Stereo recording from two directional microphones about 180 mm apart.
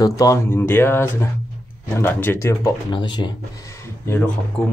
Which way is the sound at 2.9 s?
25° left (ahead or behind).